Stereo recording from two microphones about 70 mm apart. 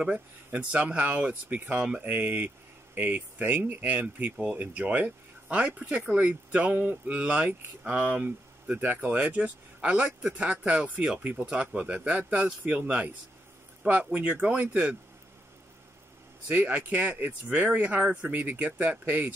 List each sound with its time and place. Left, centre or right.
0.0 s speech: centre
16.4 s speech: right